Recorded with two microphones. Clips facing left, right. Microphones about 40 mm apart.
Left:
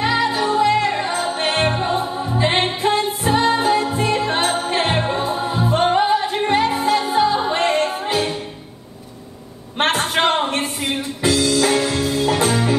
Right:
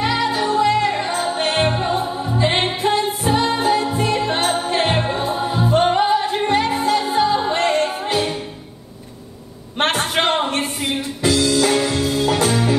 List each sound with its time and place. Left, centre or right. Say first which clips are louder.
0.0 s music: left 1 dB; centre
9.8 s music: left 1 dB; centre